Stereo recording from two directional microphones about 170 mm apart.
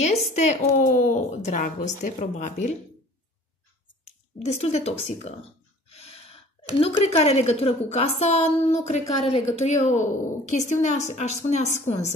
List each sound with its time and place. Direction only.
0.0 s a woman's voice: 40° left (ahead or behind)
4.5 s a woman's voice: 40° left (ahead or behind)
5.9 s a sound: 35° left (ahead or behind)
7.0 s a woman's voice: 40° left (ahead or behind)